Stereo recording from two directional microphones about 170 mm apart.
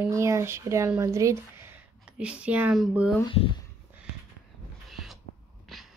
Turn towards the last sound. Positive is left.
turn(degrees=0)  # may be behind; listen again after turning